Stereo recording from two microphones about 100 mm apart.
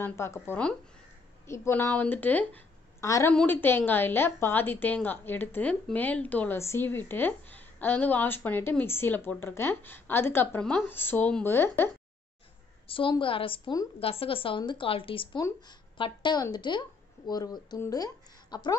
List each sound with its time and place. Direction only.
0.0 s a woman's voice: 25° left (ahead or behind)
3.0 s a woman's voice: 30° left (ahead or behind)
3.4 s a woman's voice: 20° left (ahead or behind)
12.8 s a woman's voice: 65° left (ahead or behind)
16.0 s speech: 50° left (ahead or behind)